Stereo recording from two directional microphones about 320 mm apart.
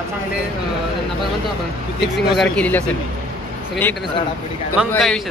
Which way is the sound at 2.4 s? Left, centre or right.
Centre.